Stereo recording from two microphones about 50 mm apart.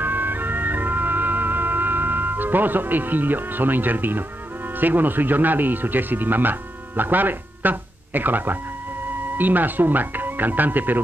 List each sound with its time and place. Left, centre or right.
0.0 s music: right
4.7 s speech: right